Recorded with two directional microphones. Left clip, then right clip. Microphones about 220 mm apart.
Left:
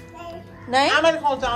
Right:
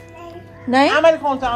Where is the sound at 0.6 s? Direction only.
30° right (ahead or behind).